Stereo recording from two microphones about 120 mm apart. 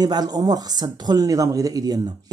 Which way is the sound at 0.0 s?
35° right (ahead or behind).